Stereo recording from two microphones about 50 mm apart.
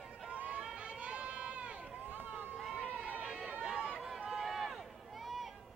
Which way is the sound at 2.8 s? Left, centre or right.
Left.